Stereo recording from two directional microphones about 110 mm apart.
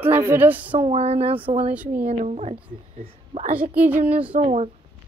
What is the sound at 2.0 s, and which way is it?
A woman's voice, 90° right.